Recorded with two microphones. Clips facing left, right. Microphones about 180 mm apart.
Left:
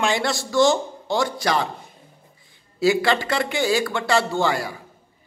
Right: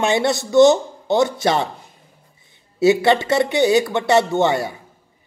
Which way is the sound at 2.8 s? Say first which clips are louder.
Right 5 dB; 20° right (ahead or behind).